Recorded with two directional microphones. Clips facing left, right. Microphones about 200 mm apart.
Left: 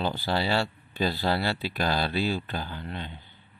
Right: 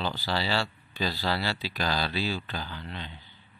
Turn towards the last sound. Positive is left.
turn(degrees=50)  # may be behind; listen again after turning